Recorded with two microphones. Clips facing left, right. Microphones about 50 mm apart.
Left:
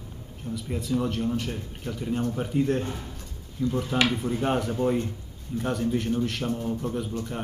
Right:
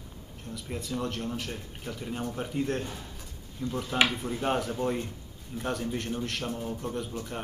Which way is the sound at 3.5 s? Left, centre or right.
Centre.